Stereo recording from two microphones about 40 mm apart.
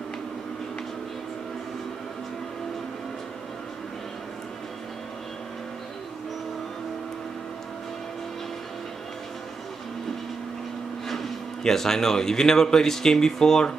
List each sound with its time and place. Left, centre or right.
11.1 s speech: centre